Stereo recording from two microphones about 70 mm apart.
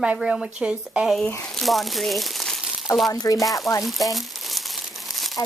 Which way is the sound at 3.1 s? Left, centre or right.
Left.